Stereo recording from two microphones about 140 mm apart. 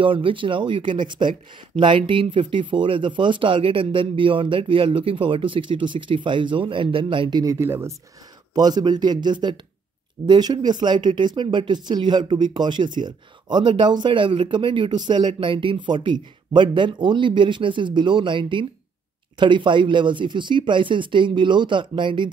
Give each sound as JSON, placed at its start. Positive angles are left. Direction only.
{"t": 0.0, "sound": "speech", "side_deg": -40}
{"t": 7.5, "sound": "speech", "side_deg": -20}
{"t": 8.5, "sound": "speech", "side_deg": -30}